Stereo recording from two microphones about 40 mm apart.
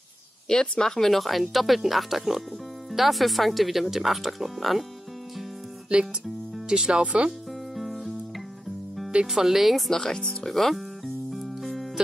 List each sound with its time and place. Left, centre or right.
0.5 s speech: centre
5.9 s speech: right
7.7 s music: centre
9.3 s speech: centre
9.8 s speech: centre
11.2 s music: centre